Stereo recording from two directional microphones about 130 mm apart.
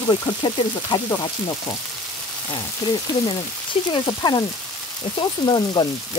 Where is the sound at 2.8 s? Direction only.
30° left (ahead or behind).